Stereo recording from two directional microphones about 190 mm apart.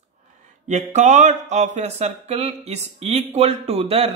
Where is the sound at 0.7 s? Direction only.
40° right (ahead or behind).